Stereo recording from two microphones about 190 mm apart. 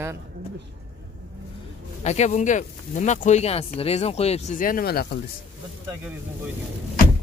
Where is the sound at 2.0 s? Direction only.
35° left (ahead or behind); by 5.1 s 55° left (ahead or behind).